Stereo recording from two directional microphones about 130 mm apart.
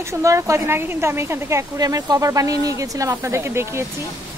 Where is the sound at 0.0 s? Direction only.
25° right (ahead or behind).